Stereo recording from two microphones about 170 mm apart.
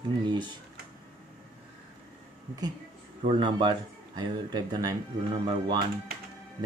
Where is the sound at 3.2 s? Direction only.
30° right (ahead or behind).